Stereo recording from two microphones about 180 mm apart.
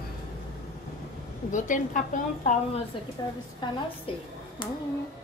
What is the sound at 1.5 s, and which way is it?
A woman's voice, 45° left (ahead or behind).